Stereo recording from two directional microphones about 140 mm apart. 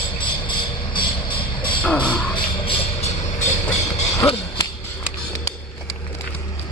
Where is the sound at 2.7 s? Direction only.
50° left (ahead or behind).